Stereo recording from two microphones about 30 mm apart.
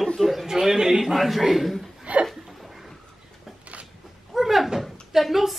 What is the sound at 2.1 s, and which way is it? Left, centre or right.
Chuckle, right.